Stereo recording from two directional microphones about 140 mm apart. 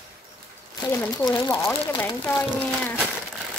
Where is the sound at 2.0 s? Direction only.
15° left (ahead or behind).